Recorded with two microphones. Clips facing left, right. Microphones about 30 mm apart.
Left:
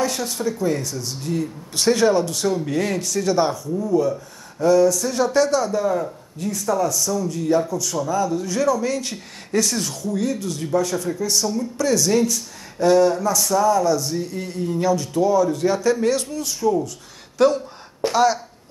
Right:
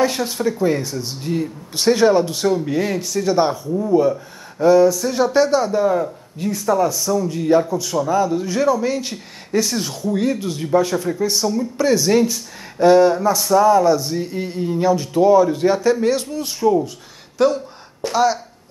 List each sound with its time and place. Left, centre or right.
0.0 s speech: right
17.4 s speech: centre